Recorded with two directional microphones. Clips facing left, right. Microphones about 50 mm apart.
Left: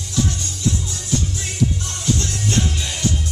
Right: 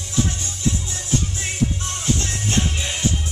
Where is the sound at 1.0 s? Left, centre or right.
Right.